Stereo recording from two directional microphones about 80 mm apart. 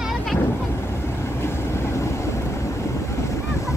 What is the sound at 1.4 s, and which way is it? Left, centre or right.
Vehicle, left.